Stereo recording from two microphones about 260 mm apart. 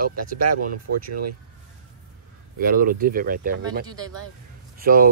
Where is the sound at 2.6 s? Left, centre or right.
Right.